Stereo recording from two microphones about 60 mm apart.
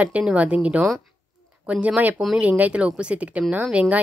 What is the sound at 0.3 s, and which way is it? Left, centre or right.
A woman's voice, right.